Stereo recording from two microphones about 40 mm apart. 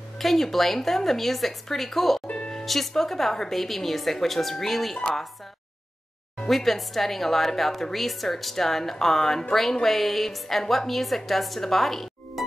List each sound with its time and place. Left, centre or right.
0.2 s a woman's voice: centre
2.2 s music: left
2.6 s a woman's voice: centre
6.5 s a woman's voice: centre